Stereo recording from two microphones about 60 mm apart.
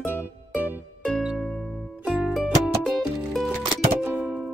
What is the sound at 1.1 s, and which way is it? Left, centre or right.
Music, centre.